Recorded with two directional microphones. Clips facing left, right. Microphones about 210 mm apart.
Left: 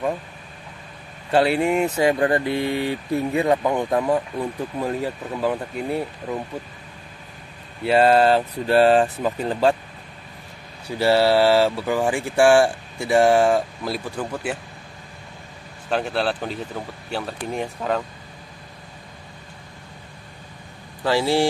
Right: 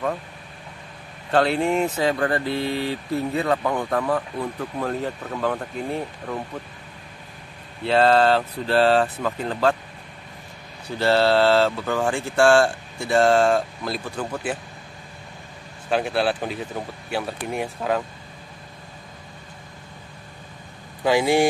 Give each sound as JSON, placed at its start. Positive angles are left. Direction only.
{"t": 1.3, "sound": "speech", "side_deg": 10}
{"t": 7.8, "sound": "speech", "side_deg": 10}
{"t": 11.0, "sound": "speech", "side_deg": 10}
{"t": 15.9, "sound": "speech", "side_deg": -10}
{"t": 21.0, "sound": "speech", "side_deg": -15}